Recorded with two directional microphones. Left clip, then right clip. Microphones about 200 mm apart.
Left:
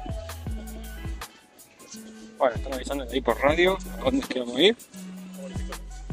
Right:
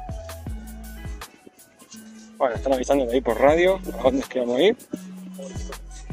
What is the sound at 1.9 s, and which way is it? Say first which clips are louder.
Speech: left 1 dB; centre (ahead or behind).